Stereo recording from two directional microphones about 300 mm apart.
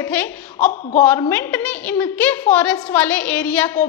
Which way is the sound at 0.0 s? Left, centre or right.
Centre.